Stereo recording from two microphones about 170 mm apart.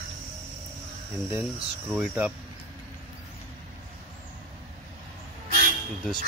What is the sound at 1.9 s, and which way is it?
Speech, 5° right (ahead or behind).